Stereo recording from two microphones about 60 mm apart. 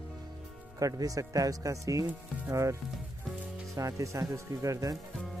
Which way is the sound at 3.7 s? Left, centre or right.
Right.